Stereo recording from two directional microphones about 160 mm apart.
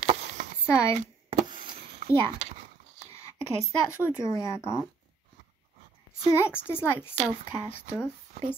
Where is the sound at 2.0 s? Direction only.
45° right (ahead or behind).